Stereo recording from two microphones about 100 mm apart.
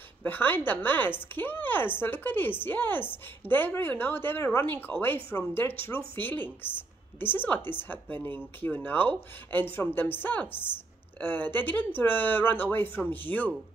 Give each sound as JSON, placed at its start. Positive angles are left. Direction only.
{"t": 0.2, "sound": "a woman's voice", "side_deg": 20}